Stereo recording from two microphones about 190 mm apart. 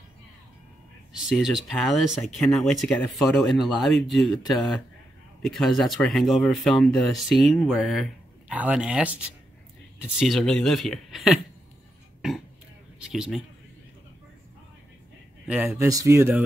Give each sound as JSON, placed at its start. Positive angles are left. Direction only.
{"t": 1.1, "sound": "speech", "side_deg": 0}
{"t": 13.0, "sound": "speech", "side_deg": -5}
{"t": 15.4, "sound": "speech", "side_deg": -10}